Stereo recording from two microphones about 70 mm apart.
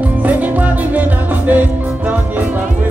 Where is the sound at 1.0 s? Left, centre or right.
Right.